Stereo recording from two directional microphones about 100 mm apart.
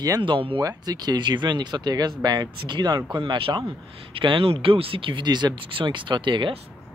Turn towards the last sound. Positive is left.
turn(degrees=-55)  # may be behind; listen again after turning